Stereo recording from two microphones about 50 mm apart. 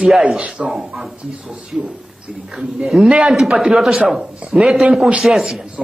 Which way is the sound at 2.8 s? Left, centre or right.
Centre.